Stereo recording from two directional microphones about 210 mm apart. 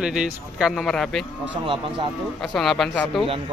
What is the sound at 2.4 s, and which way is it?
Speech, centre (ahead or behind).